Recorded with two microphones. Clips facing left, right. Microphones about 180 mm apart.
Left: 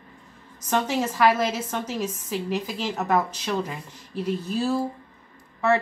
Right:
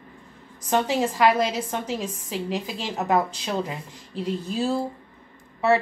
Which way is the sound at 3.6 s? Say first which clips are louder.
Right 2 dB; 15° right (ahead or behind).